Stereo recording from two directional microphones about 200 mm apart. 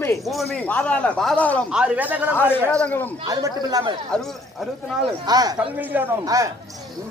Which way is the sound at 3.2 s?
20° right (ahead or behind).